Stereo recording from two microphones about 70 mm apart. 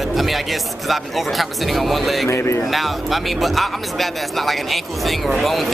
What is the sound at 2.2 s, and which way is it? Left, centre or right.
Speech, left.